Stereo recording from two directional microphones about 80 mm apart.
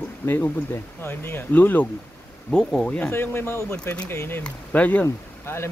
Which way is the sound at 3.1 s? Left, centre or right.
Left.